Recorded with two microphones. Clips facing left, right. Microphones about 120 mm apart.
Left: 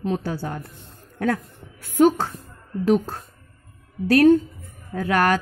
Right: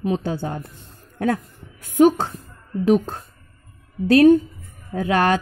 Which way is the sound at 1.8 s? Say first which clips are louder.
Right 2 dB; 15° right (ahead or behind).